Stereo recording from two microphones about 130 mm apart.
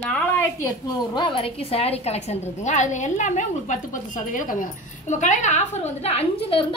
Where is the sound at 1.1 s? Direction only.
40° left (ahead or behind); by 4.6 s 90° left.